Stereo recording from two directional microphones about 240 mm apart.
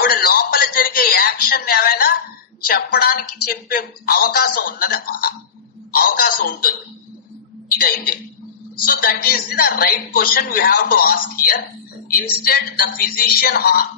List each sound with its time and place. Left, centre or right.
0.0 s a sound: left
2.6 s a man's voice: left
8.8 s a man's voice: left